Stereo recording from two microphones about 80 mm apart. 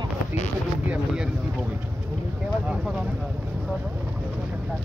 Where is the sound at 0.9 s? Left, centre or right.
Centre.